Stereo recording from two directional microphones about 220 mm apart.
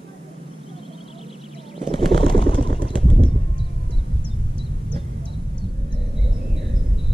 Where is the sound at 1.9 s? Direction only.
25° left (ahead or behind).